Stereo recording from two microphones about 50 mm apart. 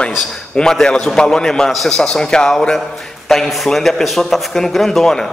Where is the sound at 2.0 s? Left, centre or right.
Centre.